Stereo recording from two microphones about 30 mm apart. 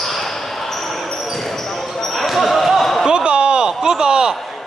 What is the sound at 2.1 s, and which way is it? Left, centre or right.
Basketball bounce, centre.